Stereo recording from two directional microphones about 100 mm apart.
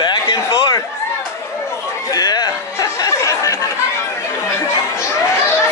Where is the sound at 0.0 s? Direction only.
50° left (ahead or behind).